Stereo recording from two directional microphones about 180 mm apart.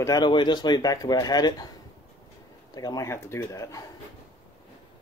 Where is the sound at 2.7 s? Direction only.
20° left (ahead or behind).